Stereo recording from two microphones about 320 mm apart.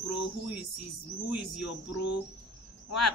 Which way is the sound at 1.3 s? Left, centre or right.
Left.